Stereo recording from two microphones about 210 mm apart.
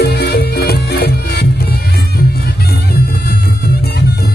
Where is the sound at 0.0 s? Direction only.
50° left (ahead or behind).